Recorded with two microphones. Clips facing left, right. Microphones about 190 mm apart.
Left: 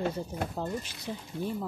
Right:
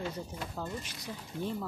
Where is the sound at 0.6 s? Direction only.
30° left (ahead or behind).